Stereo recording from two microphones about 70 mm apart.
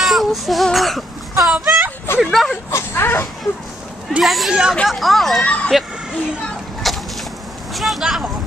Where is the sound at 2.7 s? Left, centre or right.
Left.